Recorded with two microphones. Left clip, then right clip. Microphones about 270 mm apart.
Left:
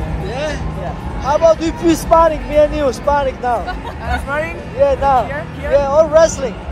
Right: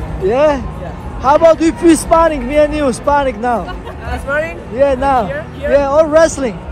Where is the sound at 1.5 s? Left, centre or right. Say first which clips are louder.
Right 5 dB; right.